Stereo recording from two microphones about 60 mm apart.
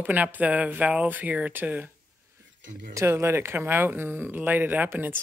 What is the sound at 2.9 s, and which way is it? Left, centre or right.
Speech, right.